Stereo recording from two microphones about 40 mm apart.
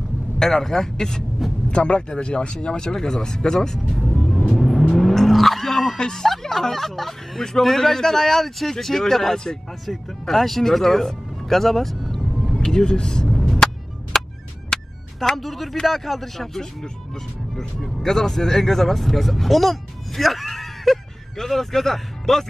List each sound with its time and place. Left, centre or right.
0.4 s speech: centre
1.7 s speech: left
4.2 s vehicle: centre
6.5 s speech: centre
12.5 s speech: centre
13.3 s vehicle: centre
14.1 s chop: centre
14.7 s music: centre
15.8 s speech: centre
17.7 s speech: centre